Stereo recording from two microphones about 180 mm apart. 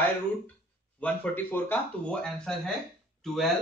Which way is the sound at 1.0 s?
10° left (ahead or behind).